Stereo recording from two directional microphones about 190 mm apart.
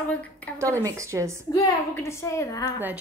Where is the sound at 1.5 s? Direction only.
15° left (ahead or behind).